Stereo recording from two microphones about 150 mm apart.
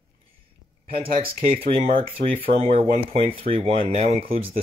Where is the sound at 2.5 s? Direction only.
40° right (ahead or behind).